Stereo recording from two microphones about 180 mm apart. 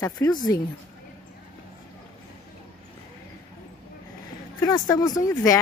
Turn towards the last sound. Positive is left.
turn(degrees=20)  # may be behind; listen again after turning